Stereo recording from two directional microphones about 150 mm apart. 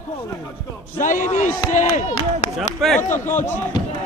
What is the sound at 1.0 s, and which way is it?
Speech, 60° left (ahead or behind).